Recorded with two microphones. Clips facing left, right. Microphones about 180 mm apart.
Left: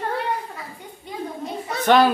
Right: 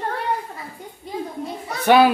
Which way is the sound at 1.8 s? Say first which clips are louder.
Right 2 dB; 10° right (ahead or behind).